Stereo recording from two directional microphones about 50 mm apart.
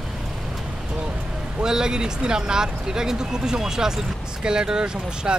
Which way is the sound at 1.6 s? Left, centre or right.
Centre.